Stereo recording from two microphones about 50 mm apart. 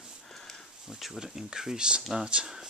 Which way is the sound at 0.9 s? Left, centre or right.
Centre.